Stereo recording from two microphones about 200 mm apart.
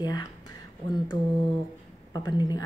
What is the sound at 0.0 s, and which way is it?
Speech, 20° left (ahead or behind).